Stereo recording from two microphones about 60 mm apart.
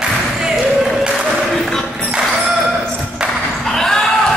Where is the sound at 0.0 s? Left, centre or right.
Centre.